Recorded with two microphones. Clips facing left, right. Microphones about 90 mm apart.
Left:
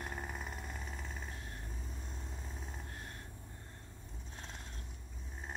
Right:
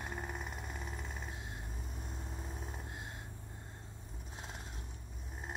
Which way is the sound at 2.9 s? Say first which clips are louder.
Right 2 dB; 20° right (ahead or behind).